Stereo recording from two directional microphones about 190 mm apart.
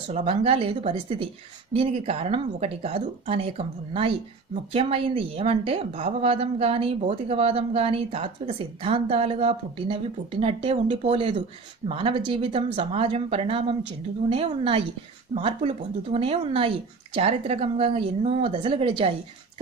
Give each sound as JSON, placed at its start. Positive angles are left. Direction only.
{"t": 0.1, "sound": "a woman's voice", "side_deg": -30}